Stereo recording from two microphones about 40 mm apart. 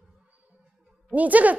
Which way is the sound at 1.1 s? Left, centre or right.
Right.